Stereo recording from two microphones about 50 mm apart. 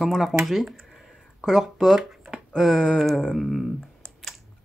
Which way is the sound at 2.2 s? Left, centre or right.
Centre.